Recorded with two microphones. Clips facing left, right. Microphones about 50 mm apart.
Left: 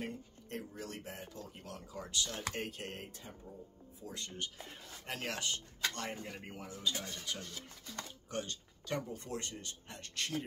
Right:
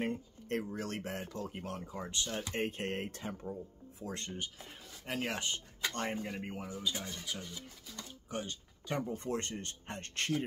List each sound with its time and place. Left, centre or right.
0.7 s speech: right
1.2 s speech: right
1.8 s speech: right
3.1 s speech: right
4.0 s speech: right
4.6 s speech: centre
5.3 s speech: right
5.8 s speech: centre
9.2 s speech: right